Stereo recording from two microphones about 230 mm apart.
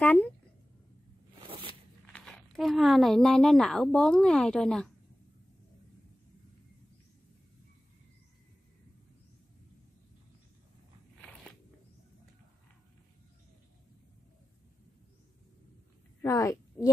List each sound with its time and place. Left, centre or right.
0.0 s a sound: centre
1.5 s walk: right
2.1 s speech: centre
16.2 s a woman's voice: centre